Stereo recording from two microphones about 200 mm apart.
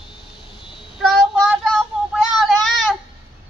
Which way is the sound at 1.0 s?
Centre (ahead or behind).